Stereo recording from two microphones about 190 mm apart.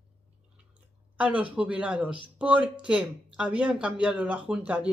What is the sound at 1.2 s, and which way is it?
Speech, 5° right (ahead or behind).